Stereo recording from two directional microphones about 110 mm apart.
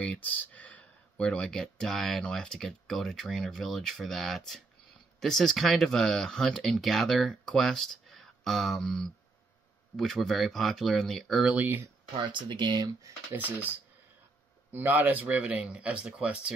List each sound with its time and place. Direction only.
0.0 s speech: 10° left (ahead or behind)
11.5 s speech: 15° right (ahead or behind)
12.2 s speech: 50° right (ahead or behind)
12.8 s speech: 30° right (ahead or behind)
14.7 s speech: 15° right (ahead or behind)